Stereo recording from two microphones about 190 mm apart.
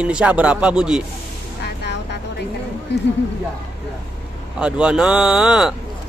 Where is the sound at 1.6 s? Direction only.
65° left (ahead or behind).